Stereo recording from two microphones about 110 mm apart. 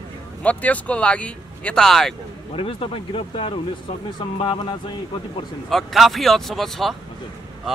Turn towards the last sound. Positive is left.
turn(degrees=0)  # may be behind; listen again after turning